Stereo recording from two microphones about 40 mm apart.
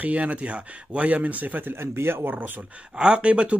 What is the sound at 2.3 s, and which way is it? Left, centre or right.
Speech, right.